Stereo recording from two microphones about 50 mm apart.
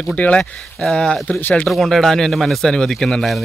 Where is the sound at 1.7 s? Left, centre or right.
Centre.